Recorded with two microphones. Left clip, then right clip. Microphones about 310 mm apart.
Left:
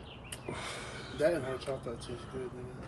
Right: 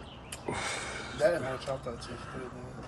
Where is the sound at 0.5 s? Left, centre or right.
Centre.